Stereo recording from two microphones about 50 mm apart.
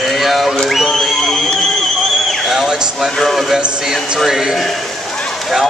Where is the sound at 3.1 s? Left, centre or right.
Centre.